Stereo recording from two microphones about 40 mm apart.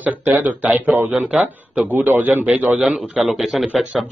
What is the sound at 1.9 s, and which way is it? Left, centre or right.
Speech, right.